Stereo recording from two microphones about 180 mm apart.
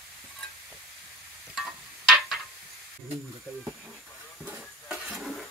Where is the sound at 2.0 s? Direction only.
Centre (ahead or behind).